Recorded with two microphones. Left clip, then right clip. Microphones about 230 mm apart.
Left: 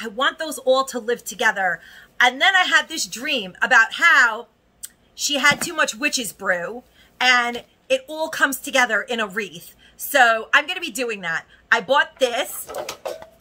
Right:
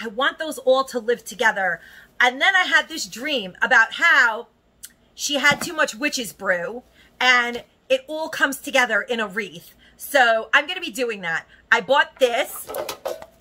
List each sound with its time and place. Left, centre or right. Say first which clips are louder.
0.0 s a woman's voice: left 1 dB; centre
12.6 s speech: right 1 dB; right